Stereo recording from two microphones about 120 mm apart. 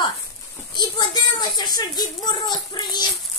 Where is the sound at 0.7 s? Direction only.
35° left (ahead or behind).